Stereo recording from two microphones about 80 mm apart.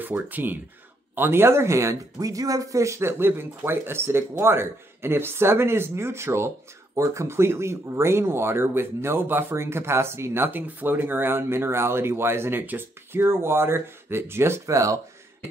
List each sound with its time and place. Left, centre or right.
0.0 s speech: right